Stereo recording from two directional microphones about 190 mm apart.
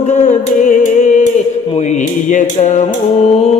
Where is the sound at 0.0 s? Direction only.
40° left (ahead or behind).